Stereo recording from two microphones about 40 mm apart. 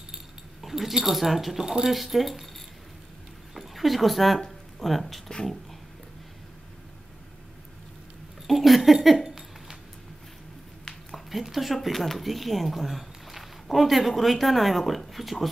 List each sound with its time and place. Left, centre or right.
0.1 s speech: centre
3.5 s speech: centre
5.3 s beatboxing: centre
8.5 s a sound: centre
10.9 s a sound: centre
11.2 s speech: centre